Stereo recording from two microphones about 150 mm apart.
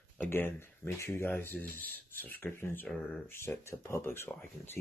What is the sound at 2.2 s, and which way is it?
Speech, 10° left (ahead or behind).